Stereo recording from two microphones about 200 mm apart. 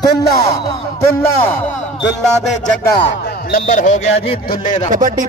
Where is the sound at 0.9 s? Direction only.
10° left (ahead or behind).